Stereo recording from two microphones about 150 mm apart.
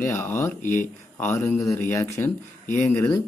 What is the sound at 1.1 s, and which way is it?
Speech, 15° left (ahead or behind).